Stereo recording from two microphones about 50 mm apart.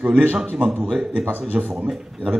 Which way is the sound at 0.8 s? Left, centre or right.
Right.